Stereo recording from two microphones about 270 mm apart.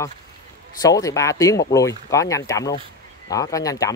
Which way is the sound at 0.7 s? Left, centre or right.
Centre.